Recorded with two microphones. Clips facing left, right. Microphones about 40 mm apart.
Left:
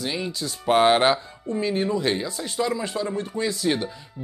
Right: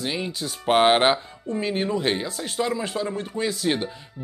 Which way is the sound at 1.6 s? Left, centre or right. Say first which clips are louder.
Left 1 dB; right.